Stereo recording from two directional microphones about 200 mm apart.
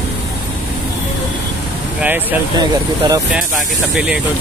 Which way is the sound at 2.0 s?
10° right (ahead or behind).